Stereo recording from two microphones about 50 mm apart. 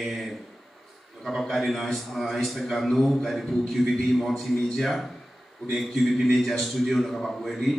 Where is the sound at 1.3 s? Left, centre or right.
Centre.